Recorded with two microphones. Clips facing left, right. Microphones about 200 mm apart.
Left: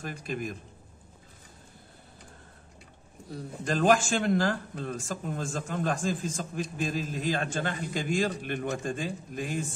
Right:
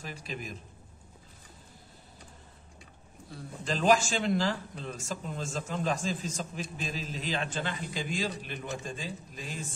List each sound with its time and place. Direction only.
0.0 s speech: 50° left (ahead or behind)
3.6 s speech: 50° left (ahead or behind)